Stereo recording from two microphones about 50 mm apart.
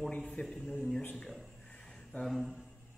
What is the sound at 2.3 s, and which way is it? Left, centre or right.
Speech, centre.